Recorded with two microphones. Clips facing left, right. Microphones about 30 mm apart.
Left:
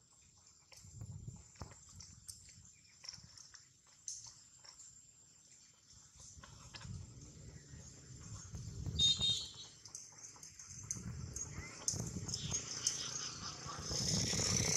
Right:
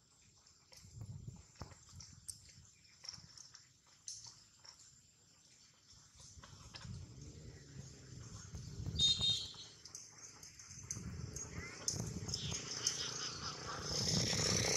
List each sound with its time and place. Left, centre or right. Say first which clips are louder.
3.0 s a sound: even; centre
4.0 s bathtub: left 1 dB; right
6.4 s horse: left 1 dB; centre
7.0 s vehicle: right 1 dB; centre